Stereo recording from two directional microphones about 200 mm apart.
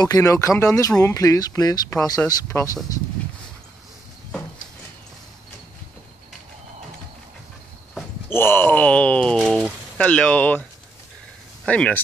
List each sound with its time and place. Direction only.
0.0 s speech: 15° left (ahead or behind)
8.3 s speech: 10° left (ahead or behind)
11.6 s speech: 5° left (ahead or behind)